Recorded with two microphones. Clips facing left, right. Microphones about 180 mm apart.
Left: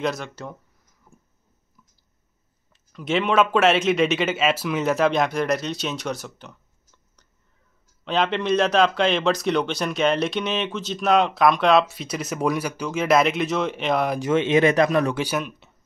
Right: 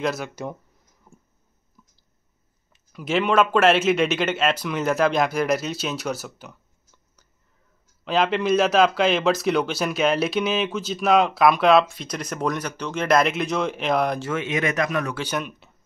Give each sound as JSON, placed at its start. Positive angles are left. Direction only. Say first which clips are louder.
{"t": 0.0, "sound": "speech", "louder": "right 1 dB", "side_deg": -5}
{"t": 1.1, "sound": "a sound", "louder": "right 2 dB", "side_deg": -20}
{"t": 2.7, "sound": "speech", "louder": "even", "side_deg": -5}
{"t": 8.0, "sound": "speech", "louder": "right 1 dB", "side_deg": 0}
{"t": 14.2, "sound": "speech", "louder": "left 7 dB", "side_deg": 25}
{"t": 15.1, "sound": "speech", "louder": "left 2 dB", "side_deg": 5}